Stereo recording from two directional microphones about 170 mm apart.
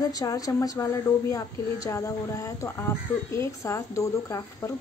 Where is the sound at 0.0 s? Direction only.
20° left (ahead or behind).